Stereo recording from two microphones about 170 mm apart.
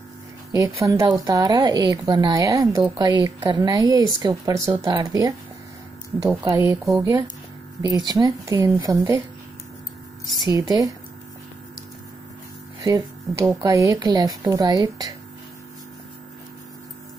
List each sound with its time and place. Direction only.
0.6 s speech: 20° right (ahead or behind)
6.4 s speech: 20° right (ahead or behind)
10.4 s speech: 20° right (ahead or behind)
12.8 s speech: 20° right (ahead or behind)